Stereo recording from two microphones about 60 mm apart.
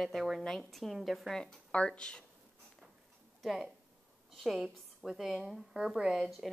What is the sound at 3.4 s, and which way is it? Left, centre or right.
A woman's voice, centre.